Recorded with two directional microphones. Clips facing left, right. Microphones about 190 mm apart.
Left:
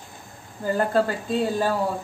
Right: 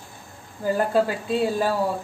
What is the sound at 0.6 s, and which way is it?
Speech, 10° right (ahead or behind).